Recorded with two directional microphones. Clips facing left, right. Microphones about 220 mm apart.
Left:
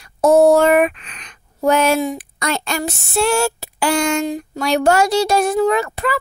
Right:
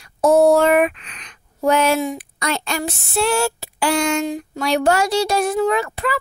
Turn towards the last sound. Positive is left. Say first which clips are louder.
# left 2 dB
turn(degrees=45)  # may be behind; listen again after turning